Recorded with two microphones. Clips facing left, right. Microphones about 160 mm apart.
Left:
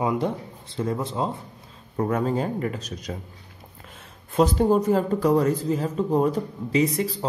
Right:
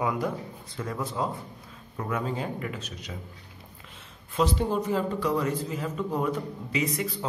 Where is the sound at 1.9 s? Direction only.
40° left (ahead or behind).